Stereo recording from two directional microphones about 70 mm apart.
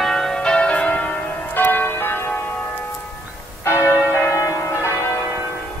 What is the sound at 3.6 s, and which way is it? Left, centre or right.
Church bell, left.